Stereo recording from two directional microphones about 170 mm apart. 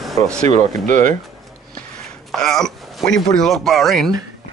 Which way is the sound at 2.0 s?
5° left (ahead or behind).